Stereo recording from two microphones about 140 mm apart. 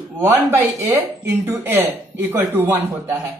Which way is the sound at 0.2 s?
15° right (ahead or behind).